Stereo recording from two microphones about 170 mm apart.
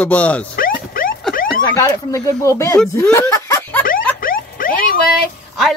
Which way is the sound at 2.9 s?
15° left (ahead or behind).